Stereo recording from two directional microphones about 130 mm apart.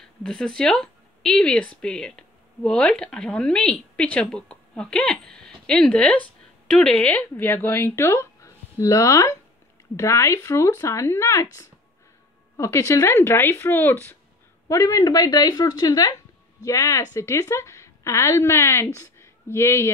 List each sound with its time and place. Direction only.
0.2 s speech: 5° left (ahead or behind); by 11.4 s 20° left (ahead or behind)
12.5 s speech: 20° left (ahead or behind)